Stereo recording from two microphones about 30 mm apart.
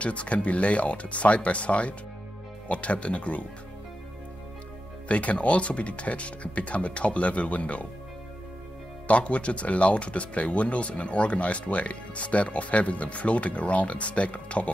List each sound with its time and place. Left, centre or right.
0.0 s speech: left
5.0 s speech: left
9.0 s speech: left